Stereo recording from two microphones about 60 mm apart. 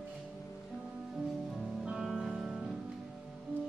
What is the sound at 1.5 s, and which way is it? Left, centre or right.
Music, centre.